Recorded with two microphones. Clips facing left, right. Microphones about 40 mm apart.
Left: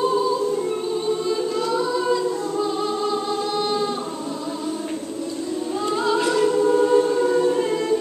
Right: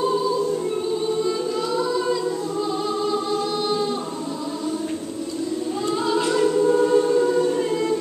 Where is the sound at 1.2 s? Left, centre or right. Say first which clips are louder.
Left 1 dB; centre.